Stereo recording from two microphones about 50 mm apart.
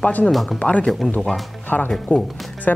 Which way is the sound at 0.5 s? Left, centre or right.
Left.